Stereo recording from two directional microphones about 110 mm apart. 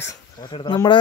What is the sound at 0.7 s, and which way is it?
Speech, 45° left (ahead or behind).